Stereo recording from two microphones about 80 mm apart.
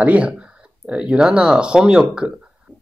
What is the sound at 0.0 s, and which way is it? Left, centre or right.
Speech, centre.